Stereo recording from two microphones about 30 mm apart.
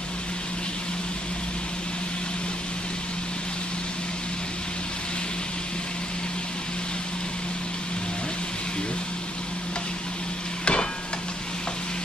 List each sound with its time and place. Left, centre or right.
10.6 s hammer: left